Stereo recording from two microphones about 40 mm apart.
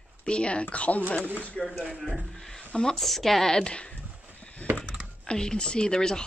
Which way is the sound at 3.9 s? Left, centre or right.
Left.